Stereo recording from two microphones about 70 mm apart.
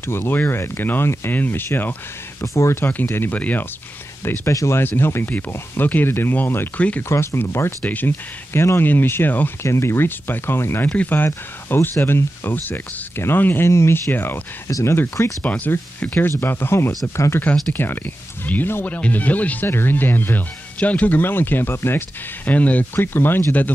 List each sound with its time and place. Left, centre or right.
0.0 s speech: left
2.4 s speech: left
3.3 s speech: left
4.2 s speech: left
7.8 s speech: left
8.5 s speech: left
9.6 s speech: left
13.7 s speech: left
14.7 s speech: left
15.4 s speech: left